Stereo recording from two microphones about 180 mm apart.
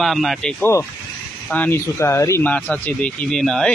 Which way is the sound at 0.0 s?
Centre (ahead or behind).